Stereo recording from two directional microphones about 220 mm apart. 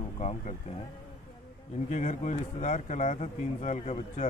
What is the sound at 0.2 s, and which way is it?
Speech, 30° left (ahead or behind).